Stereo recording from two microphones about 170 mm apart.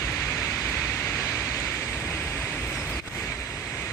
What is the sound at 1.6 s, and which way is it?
Vehicle, 10° left (ahead or behind).